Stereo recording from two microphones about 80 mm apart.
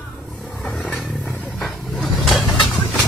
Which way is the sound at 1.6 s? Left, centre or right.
Centre.